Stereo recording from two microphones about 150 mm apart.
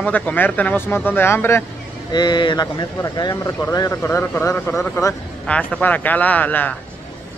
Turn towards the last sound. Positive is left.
turn(degrees=10)  # may be behind; listen again after turning